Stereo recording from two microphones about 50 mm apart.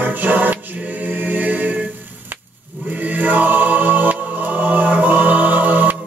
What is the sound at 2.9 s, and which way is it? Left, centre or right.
Music, right.